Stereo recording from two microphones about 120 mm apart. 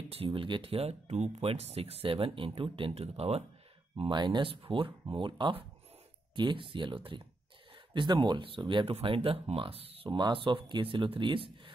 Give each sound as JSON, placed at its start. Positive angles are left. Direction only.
{"t": 0.1, "sound": "speech", "side_deg": -50}
{"t": 4.0, "sound": "speech", "side_deg": -40}